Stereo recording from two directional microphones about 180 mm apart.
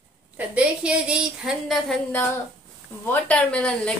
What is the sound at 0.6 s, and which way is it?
Speech, 5° right (ahead or behind).